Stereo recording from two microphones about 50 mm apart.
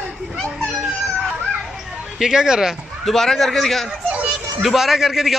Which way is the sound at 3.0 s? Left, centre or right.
Centre.